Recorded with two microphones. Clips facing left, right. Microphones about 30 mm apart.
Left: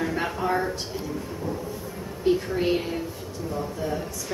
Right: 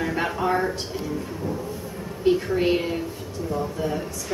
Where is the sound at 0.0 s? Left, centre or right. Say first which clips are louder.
Right 2 dB; centre.